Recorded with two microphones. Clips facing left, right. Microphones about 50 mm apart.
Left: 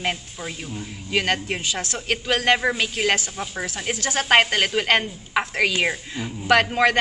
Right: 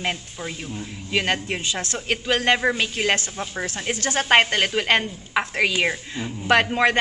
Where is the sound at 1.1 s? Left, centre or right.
Right.